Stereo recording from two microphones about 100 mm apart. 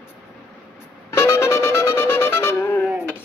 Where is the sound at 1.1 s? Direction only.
25° left (ahead or behind).